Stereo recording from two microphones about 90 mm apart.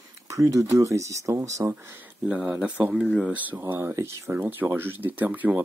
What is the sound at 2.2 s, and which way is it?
Speech, 15° right (ahead or behind).